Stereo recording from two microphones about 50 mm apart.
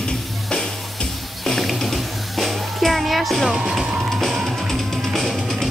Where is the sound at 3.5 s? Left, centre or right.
Centre.